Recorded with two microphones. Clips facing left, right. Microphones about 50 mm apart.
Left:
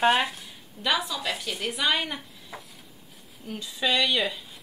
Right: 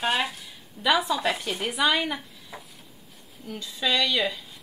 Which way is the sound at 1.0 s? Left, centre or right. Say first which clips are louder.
Right 5 dB; right.